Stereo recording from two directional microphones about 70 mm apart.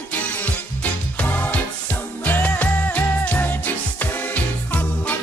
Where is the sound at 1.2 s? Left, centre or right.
Centre.